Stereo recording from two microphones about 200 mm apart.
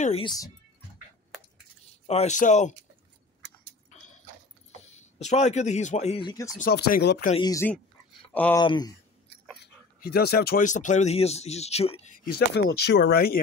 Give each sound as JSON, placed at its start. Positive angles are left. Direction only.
{"t": 0.0, "sound": "speech", "side_deg": 25}
{"t": 2.0, "sound": "speech", "side_deg": 35}
{"t": 3.9, "sound": "dog", "side_deg": 40}
{"t": 4.9, "sound": "speech", "side_deg": 35}
{"t": 6.6, "sound": "speech", "side_deg": 50}
{"t": 7.3, "sound": "speech", "side_deg": 15}
{"t": 8.3, "sound": "speech", "side_deg": 5}
{"t": 8.5, "sound": "speech", "side_deg": 20}
{"t": 9.9, "sound": "speech", "side_deg": 50}
{"t": 12.3, "sound": "speech", "side_deg": 50}